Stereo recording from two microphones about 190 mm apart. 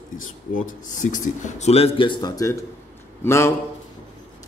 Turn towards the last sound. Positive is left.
turn(degrees=15)  # may be behind; listen again after turning